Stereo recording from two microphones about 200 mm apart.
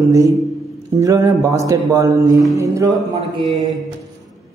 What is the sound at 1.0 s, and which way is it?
Speech, 15° right (ahead or behind).